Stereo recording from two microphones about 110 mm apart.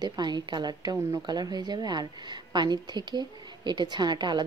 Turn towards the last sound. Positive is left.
turn(degrees=-45)  # may be behind; listen again after turning